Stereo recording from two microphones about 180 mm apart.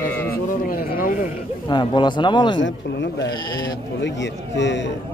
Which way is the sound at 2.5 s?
85° left.